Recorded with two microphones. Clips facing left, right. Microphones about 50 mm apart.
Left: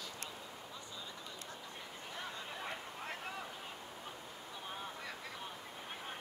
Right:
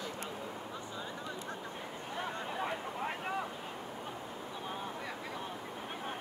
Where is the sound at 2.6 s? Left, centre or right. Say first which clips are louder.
Right 9 dB; centre.